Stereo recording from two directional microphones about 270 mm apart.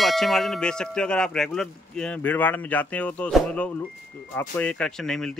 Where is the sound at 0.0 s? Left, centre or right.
Centre.